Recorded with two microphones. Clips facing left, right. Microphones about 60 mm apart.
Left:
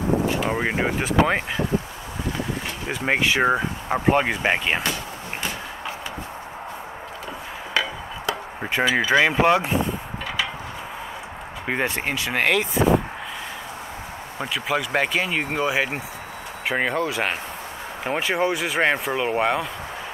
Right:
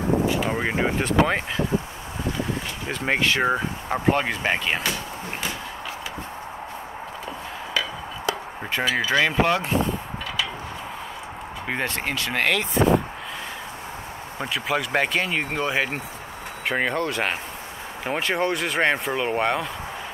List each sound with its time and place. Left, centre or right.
0.4 s speech: centre
2.9 s speech: centre
8.7 s speech: centre
11.6 s speech: centre
14.4 s speech: centre